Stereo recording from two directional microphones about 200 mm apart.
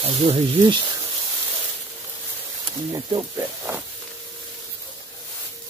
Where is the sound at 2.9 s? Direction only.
20° right (ahead or behind).